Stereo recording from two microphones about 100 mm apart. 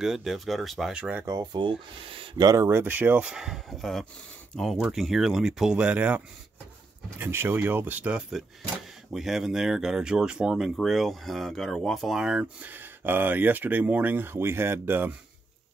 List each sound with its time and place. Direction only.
0.0 s speech: 5° right (ahead or behind)
1.2 s speech: 40° right (ahead or behind); by 2.4 s 60° right (ahead or behind)
2.4 s speech: 30° right (ahead or behind)
3.3 s speech: 5° right (ahead or behind); by 15.1 s 20° right (ahead or behind)